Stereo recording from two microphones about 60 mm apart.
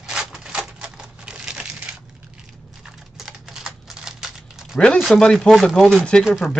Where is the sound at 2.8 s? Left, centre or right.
Centre.